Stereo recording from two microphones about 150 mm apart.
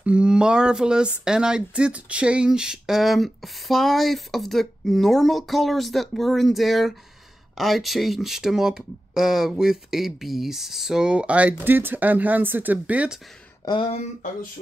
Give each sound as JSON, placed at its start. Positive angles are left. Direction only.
{"t": 0.0, "sound": "speech", "side_deg": -5}
{"t": 13.7, "sound": "speech", "side_deg": 40}